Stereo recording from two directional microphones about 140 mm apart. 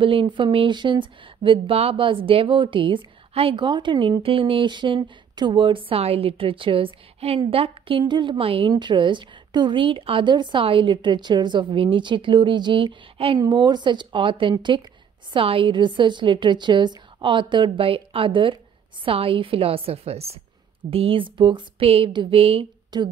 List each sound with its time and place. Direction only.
0.0 s a woman's voice: 40° right (ahead or behind)
22.9 s a woman's voice: 30° right (ahead or behind)